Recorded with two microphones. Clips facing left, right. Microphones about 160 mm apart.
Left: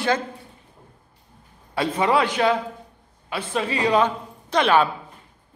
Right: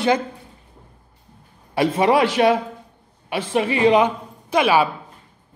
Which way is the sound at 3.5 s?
20° right (ahead or behind).